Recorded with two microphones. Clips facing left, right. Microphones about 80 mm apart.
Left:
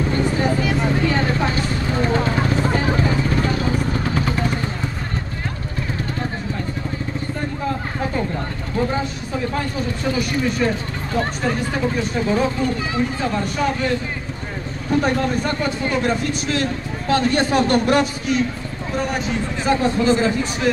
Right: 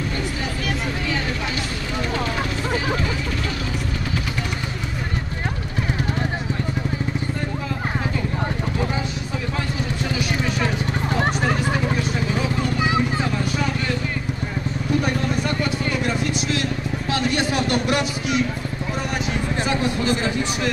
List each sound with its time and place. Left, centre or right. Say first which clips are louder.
0.2 s vehicle: left 7 dB; left
14.9 s vehicle: left 4 dB; left
17.1 s a sound: left 5 dB; left
19.7 s a man's voice: left 7 dB; left